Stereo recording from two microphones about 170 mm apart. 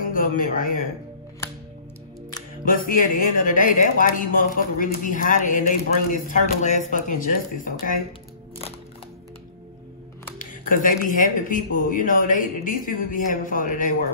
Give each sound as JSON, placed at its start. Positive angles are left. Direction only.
{"t": 0.1, "sound": "speech", "side_deg": 55}
{"t": 2.6, "sound": "speech", "side_deg": 55}
{"t": 10.4, "sound": "speech", "side_deg": 50}